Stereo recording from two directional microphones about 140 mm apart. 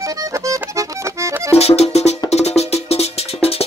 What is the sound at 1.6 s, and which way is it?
Music, 50° left (ahead or behind).